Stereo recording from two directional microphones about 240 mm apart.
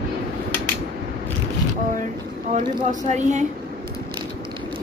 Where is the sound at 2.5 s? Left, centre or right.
Right.